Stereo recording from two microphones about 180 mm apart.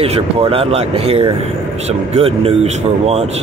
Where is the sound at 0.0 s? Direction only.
30° right (ahead or behind).